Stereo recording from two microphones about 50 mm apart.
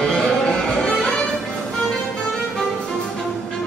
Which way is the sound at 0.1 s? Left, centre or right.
Centre.